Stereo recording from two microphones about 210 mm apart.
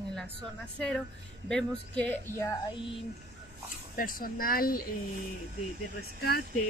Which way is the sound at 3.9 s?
45° left (ahead or behind).